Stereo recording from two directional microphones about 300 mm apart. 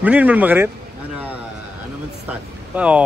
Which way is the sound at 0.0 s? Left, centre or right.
Centre.